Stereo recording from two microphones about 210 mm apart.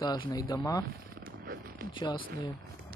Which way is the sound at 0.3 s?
15° left (ahead or behind).